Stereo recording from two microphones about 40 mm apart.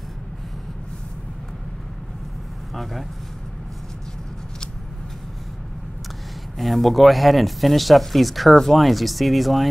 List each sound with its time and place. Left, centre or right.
2.7 s speech: centre
6.6 s speech: centre